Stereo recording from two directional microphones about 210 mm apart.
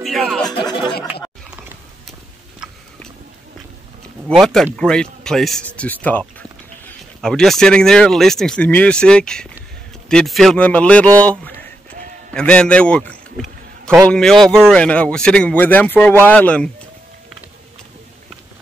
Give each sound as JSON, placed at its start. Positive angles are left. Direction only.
{"t": 0.0, "sound": "speech", "side_deg": 0}
{"t": 0.6, "sound": "speech", "side_deg": 20}
{"t": 2.6, "sound": "a sound", "side_deg": -5}
{"t": 4.3, "sound": "speech", "side_deg": 0}
{"t": 12.3, "sound": "a sound", "side_deg": 5}
{"t": 14.1, "sound": "speech", "side_deg": 0}